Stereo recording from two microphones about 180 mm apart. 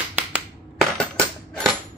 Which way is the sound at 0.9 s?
5° left (ahead or behind).